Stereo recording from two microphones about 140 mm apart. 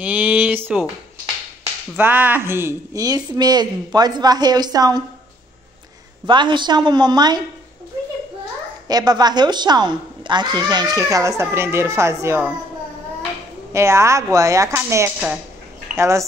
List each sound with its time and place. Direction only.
0.0 s speech: 10° right (ahead or behind)
2.0 s a woman's voice: 15° right (ahead or behind)
6.2 s a woman's voice: 35° right (ahead or behind)
8.8 s a woman's voice: 30° right (ahead or behind)
13.7 s a woman's voice: 20° right (ahead or behind)